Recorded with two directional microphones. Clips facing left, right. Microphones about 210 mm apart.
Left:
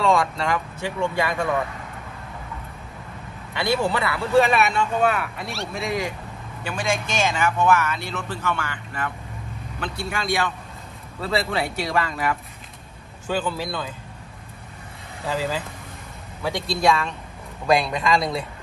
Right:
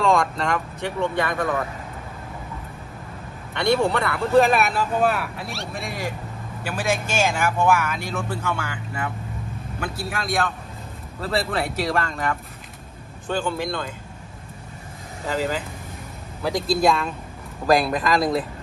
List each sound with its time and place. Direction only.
0.0 s speech: centre (ahead or behind)
3.5 s speech: 5° left (ahead or behind)
16.4 s speech: centre (ahead or behind)